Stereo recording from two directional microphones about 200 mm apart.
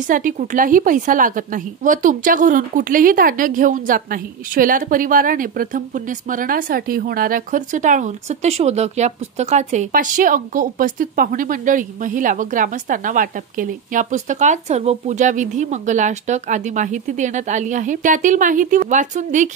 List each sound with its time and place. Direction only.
0.0 s a woman's voice: 40° right (ahead or behind)